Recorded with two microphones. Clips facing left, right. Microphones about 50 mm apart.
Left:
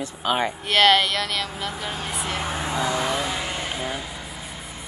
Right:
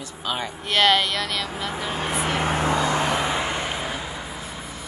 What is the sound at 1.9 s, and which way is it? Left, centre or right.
Speech, right.